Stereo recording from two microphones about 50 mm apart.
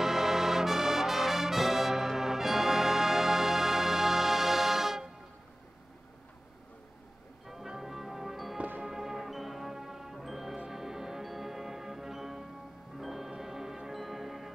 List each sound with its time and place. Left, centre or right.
0.0 s brass instrument: centre
7.4 s music: centre